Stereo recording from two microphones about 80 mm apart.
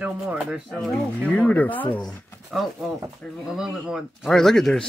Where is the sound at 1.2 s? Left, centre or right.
Centre.